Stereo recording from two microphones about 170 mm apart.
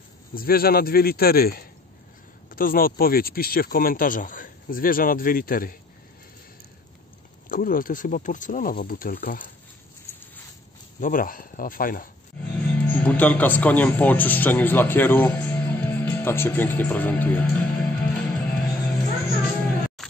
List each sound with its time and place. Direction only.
0.3 s speech: 60° left (ahead or behind)
7.4 s speech: 55° left (ahead or behind)
11.0 s speech: 50° left (ahead or behind)
12.6 s speech: 10° left (ahead or behind)
20.0 s grunt: centre (ahead or behind)